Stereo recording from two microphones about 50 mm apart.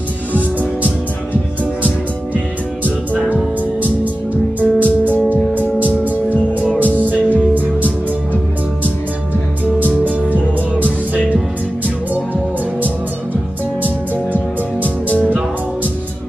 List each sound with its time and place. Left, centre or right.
0.3 s music: right
4.6 s music: right
9.8 s music: right
14.8 s music: left